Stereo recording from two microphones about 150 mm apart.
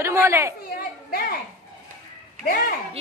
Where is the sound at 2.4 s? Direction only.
65° left (ahead or behind).